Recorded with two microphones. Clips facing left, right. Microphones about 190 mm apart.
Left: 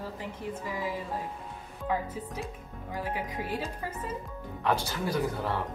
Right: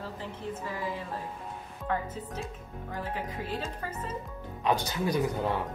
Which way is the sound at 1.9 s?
10° left (ahead or behind).